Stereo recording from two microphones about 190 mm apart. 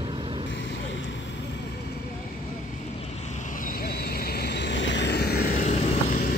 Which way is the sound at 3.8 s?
55° left (ahead or behind).